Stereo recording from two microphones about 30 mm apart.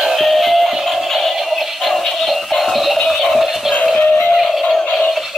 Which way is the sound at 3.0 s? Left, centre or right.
Centre.